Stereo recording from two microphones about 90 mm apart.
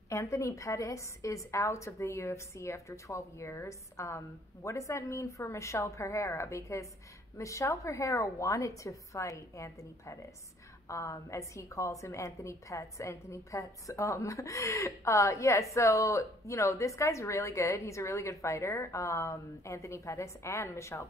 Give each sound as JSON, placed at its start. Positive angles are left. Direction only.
{"t": 0.1, "sound": "a woman's voice", "side_deg": 35}